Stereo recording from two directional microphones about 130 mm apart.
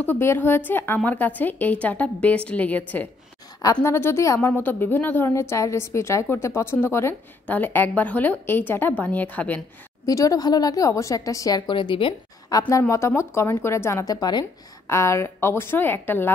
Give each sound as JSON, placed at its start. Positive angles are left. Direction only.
{"t": 0.0, "sound": "a woman's voice", "side_deg": 15}
{"t": 3.8, "sound": "a woman's voice", "side_deg": 20}
{"t": 10.0, "sound": "speech", "side_deg": 25}